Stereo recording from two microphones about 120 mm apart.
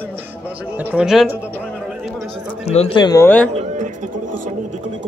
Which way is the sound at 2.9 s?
35° left (ahead or behind).